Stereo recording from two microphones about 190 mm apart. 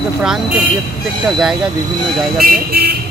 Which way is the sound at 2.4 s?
50° right (ahead or behind).